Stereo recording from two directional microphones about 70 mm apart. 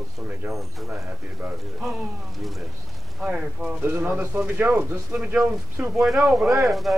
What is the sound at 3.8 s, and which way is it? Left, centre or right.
Speech, right.